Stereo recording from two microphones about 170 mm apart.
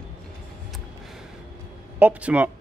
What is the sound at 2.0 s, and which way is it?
Speech, 10° right (ahead or behind).